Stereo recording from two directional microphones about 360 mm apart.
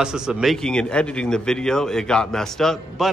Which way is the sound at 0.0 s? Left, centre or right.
Centre.